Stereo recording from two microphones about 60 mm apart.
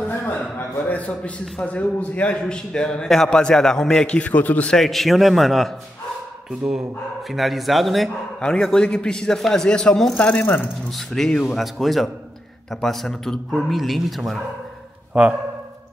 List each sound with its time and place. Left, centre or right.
0.1 s a sound: left
1.6 s a man's voice: left
4.2 s a man's voice: left
4.6 s a man's voice: centre
7.2 s a man's voice: centre
8.4 s a man's voice: centre
10.4 s speech: left
10.9 s a man's voice: centre
15.2 s speech: centre